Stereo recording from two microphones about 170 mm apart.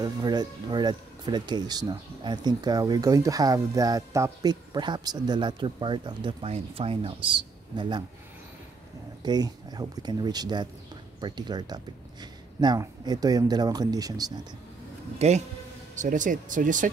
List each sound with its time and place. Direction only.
0.0 s speech: 25° right (ahead or behind)
9.2 s speech: 25° right (ahead or behind)
15.1 s speech: 40° right (ahead or behind)